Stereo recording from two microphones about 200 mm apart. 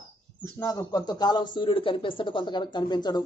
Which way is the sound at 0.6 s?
15° left (ahead or behind).